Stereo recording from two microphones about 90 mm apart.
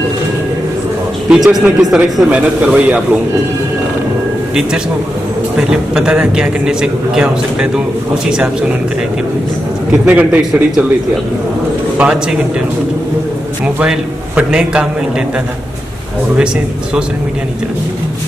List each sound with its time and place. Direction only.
1.3 s a man's voice: 5° right (ahead or behind)
5.6 s a man's voice: 10° right (ahead or behind)
10.0 s a man's voice: 15° right (ahead or behind)
12.0 s a man's voice: 5° right (ahead or behind)
13.7 s a man's voice: 10° right (ahead or behind)